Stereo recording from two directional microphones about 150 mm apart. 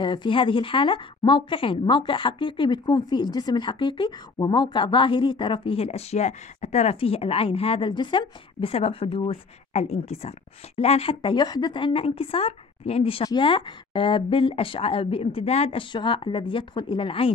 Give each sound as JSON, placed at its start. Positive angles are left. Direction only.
{"t": 0.0, "sound": "speech", "side_deg": 30}
{"t": 15.9, "sound": "speech", "side_deg": 30}